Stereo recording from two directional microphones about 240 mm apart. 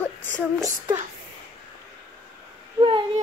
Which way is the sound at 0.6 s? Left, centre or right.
Centre.